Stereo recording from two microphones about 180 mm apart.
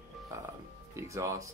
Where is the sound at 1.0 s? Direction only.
15° right (ahead or behind).